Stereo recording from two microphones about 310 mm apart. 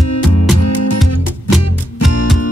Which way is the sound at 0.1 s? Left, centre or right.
Left.